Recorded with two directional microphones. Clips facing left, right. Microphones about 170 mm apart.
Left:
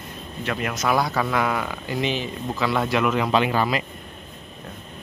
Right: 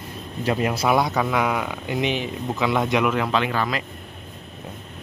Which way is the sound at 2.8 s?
15° right (ahead or behind).